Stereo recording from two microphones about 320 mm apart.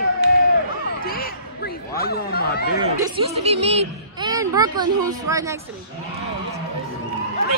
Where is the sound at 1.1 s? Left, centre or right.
Left.